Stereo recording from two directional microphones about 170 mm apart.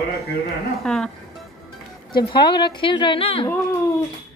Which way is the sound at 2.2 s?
25° left (ahead or behind).